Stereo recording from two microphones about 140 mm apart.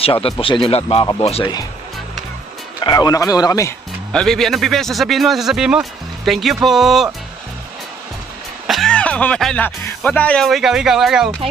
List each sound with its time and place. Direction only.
0.0 s a man's voice: 40° left (ahead or behind)
2.8 s a man's voice: 30° left (ahead or behind)
4.1 s a man's voice: 5° left (ahead or behind)
8.6 s music: centre (ahead or behind)
9.8 s a man's voice: 10° left (ahead or behind)